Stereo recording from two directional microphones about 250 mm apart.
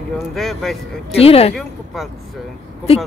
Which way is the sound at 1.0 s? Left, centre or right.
Left.